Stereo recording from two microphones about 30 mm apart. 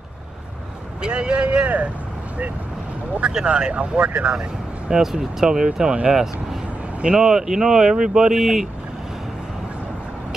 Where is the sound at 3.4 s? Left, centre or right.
Right.